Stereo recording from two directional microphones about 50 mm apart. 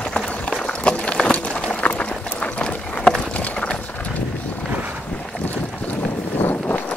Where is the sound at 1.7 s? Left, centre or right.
Left.